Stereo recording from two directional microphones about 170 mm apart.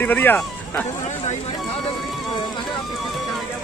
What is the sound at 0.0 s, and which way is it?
Speech, 10° left (ahead or behind).